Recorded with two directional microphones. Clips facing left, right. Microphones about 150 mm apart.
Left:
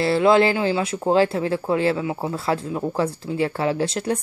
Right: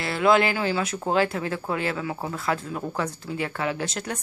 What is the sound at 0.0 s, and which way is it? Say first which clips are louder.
Speech: left 4 dB; 30° left (ahead or behind).